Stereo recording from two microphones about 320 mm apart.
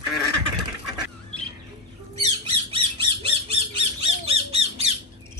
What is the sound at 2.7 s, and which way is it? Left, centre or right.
Squawk, centre.